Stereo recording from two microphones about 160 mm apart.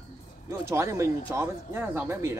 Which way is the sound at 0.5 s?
20° right (ahead or behind).